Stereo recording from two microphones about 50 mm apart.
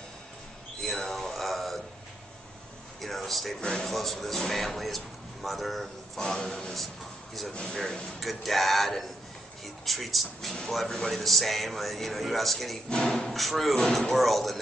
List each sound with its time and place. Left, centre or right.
0.8 s a sound: centre
3.0 s a sound: centre
3.6 s speech: centre
8.2 s speech: centre
12.9 s speech: centre
13.3 s speech: centre